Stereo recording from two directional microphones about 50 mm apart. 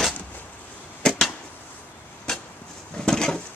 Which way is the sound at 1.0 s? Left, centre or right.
Centre.